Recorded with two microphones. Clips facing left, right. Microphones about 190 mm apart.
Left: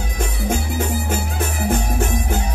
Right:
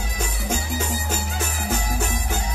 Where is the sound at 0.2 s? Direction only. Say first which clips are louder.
Left 5 dB; 55° left (ahead or behind).